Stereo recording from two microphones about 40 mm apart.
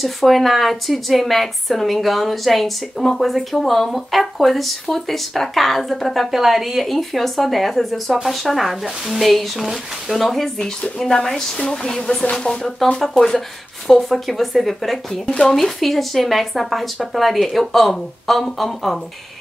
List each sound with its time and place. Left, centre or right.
0.0 s a woman's voice: centre
10.6 s a woman's voice: centre